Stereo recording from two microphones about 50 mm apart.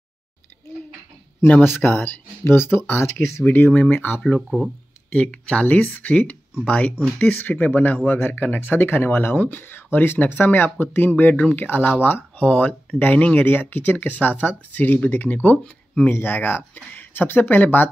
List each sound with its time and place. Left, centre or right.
1.8 s speech: left
3.4 s speech: left
4.4 s speech: centre
5.1 s speech: left
7.2 s speech: left
15.6 s speech: left
16.1 s speech: left